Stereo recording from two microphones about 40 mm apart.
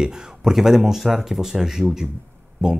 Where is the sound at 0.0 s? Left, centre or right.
Centre.